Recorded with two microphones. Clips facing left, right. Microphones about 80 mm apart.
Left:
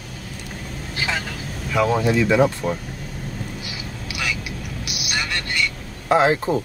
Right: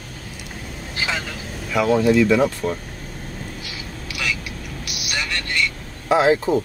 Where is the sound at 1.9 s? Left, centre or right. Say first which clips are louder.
Right 6 dB; centre.